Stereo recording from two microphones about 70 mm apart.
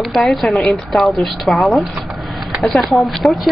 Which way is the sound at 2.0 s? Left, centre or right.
Centre.